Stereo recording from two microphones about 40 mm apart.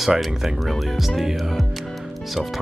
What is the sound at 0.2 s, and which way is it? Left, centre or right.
Speech, centre.